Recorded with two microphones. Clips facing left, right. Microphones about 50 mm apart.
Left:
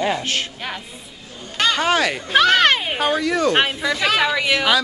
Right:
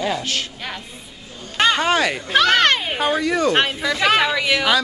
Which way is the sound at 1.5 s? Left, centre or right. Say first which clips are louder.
Right 2 dB; right.